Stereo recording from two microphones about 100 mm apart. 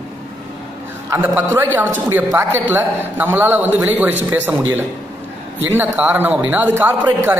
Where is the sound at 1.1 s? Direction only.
20° right (ahead or behind).